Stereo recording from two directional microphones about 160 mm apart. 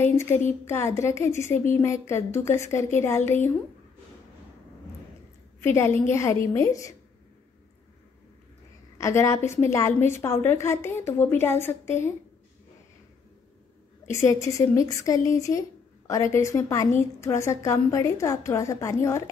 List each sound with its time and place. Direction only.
0.0 s a woman's voice: 15° left (ahead or behind)
5.6 s a woman's voice: 15° left (ahead or behind)
8.9 s a woman's voice: 20° left (ahead or behind)
14.0 s a woman's voice: 20° left (ahead or behind)